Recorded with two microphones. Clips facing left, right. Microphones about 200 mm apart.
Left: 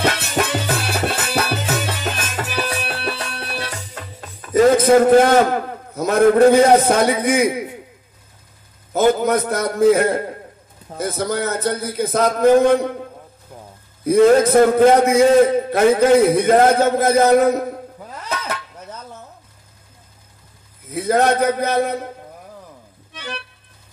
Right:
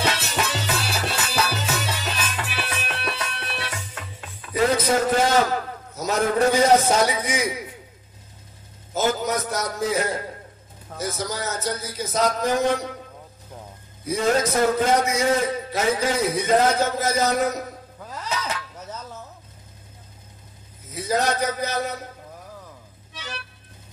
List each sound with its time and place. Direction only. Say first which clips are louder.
0.0 s music: left 5 dB; 55° left (ahead or behind); by 4.0 s 40° left (ahead or behind)
4.1 s a man's voice: left 11 dB; 40° left (ahead or behind)
8.9 s a man's voice: left 8 dB; 55° left (ahead or behind)
14.0 s a man's voice: left 10 dB; 55° left (ahead or behind)
18.2 s a sound: left 2 dB; 55° left (ahead or behind)
20.9 s a man's voice: left 7 dB; 55° left (ahead or behind)
23.1 s music: left 6 dB; 55° left (ahead or behind)